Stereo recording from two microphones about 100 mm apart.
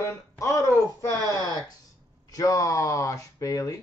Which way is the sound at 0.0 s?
30° left (ahead or behind).